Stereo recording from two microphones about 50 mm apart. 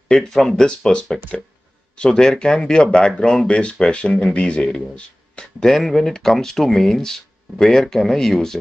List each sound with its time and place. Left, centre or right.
0.1 s speech: centre